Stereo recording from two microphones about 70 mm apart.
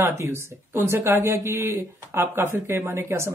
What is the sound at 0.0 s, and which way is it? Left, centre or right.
Speech, right.